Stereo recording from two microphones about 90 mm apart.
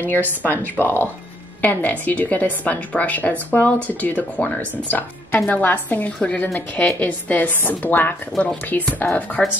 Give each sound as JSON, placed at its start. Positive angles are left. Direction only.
{"t": 0.1, "sound": "a woman's voice", "side_deg": 20}